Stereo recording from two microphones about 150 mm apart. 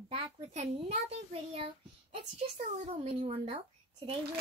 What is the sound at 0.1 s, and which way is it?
A child's voice, 45° right (ahead or behind).